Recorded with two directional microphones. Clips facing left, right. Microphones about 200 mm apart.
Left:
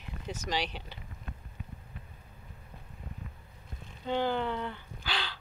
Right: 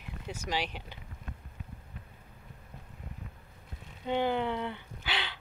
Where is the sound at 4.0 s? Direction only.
15° right (ahead or behind).